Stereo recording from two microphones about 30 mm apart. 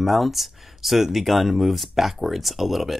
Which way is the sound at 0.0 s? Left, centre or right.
Centre.